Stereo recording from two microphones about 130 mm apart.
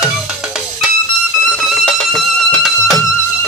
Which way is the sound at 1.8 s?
Centre (ahead or behind).